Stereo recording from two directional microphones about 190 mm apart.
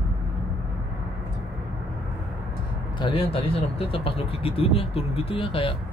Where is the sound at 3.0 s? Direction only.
25° left (ahead or behind).